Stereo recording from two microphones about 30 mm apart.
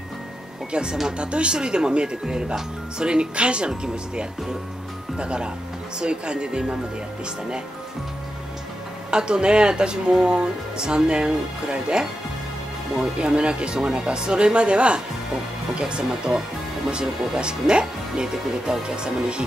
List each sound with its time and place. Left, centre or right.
0.7 s speech: right
9.1 s speech: right
17.4 s speech: right